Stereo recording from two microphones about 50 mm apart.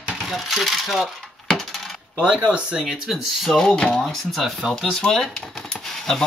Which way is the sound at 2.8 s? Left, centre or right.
Centre.